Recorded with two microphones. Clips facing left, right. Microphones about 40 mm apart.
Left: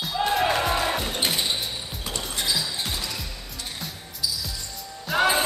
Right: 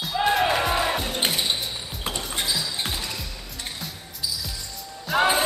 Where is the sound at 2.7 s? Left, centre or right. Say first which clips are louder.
Right 1 dB; right.